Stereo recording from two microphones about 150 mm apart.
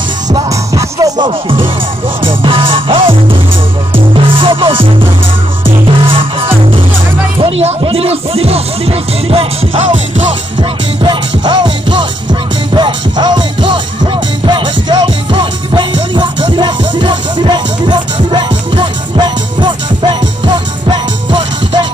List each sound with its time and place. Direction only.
0.3 s music: 25° right (ahead or behind)
7.4 s music: 40° right (ahead or behind)
11.0 s music: 30° right (ahead or behind)